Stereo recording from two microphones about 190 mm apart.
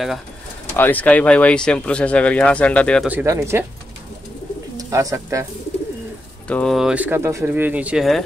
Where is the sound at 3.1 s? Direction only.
10° right (ahead or behind).